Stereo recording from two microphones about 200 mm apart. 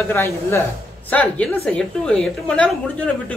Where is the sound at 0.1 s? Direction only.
10° left (ahead or behind).